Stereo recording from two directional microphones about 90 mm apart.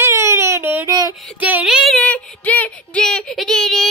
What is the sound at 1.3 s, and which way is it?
Speech, 20° right (ahead or behind).